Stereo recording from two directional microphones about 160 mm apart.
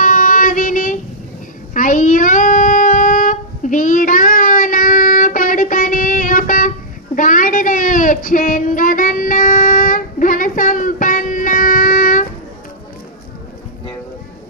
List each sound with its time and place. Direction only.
0.0 s child singing: 55° left (ahead or behind)